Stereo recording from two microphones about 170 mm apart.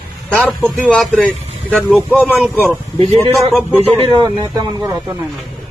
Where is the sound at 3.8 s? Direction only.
30° right (ahead or behind).